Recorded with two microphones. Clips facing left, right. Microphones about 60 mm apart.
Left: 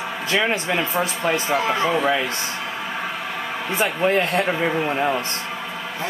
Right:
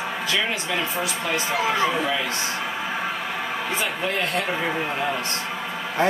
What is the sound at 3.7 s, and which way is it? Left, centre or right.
Speech, left.